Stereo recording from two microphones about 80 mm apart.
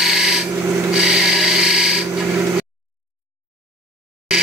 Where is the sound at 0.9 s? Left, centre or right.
Centre.